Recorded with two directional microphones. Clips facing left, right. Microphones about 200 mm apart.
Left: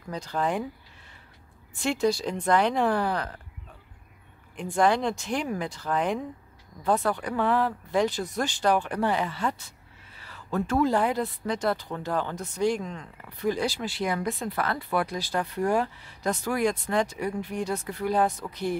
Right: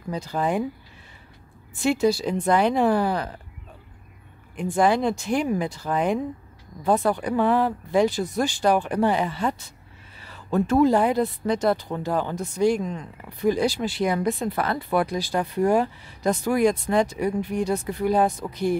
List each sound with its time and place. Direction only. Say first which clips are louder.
0.1 s speech: right 3 dB; 10° right (ahead or behind)
1.8 s speech: right 4 dB; 5° right (ahead or behind)
4.6 s speech: right 3 dB; 5° right (ahead or behind)